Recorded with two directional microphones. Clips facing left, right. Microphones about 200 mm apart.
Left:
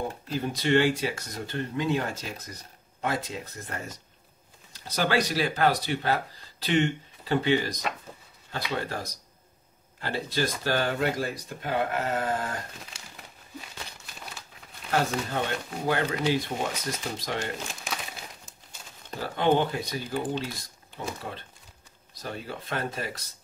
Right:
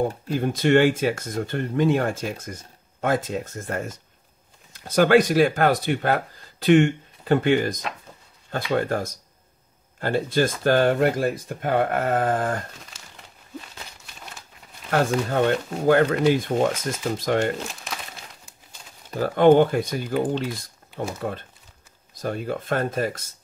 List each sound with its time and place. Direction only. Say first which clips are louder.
0.3 s speech: right 5 dB; 50° right (ahead or behind)
14.9 s speech: right 5 dB; 55° right (ahead or behind)
19.1 s speech: right 9 dB; 50° right (ahead or behind)